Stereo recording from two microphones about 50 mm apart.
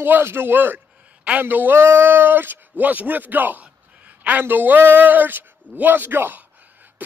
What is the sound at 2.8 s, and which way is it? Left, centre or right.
A man's voice, right.